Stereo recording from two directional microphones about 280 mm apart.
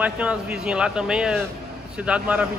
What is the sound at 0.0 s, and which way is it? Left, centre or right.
Speech, centre.